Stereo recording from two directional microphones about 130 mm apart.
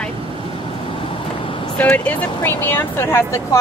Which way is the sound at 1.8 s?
10° left (ahead or behind).